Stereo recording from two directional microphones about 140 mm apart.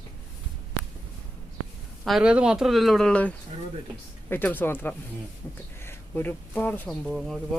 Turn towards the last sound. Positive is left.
turn(degrees=0)  # may be behind; listen again after turning